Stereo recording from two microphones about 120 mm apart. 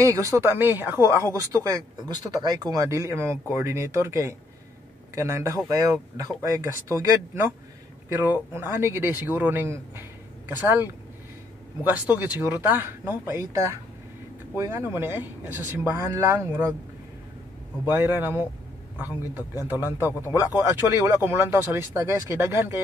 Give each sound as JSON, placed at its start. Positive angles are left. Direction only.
{"t": 0.0, "sound": "a man's voice", "side_deg": -25}
{"t": 17.8, "sound": "a man's voice", "side_deg": -15}